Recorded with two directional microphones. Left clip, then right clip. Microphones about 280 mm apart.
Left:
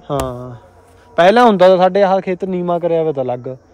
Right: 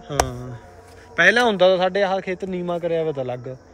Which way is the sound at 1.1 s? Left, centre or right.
Centre.